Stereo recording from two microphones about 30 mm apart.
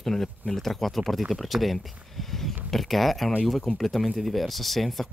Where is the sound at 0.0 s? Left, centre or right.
Centre.